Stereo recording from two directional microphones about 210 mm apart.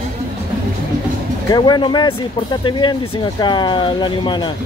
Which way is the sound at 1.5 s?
20° left (ahead or behind).